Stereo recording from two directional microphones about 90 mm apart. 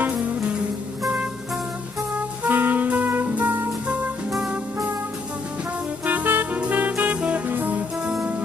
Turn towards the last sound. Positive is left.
turn(degrees=-20)  # may be behind; listen again after turning